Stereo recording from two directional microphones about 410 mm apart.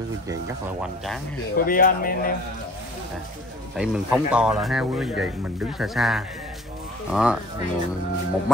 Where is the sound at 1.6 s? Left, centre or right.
Centre.